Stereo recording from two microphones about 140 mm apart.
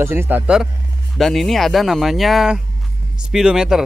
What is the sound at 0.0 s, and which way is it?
Speech, 15° right (ahead or behind).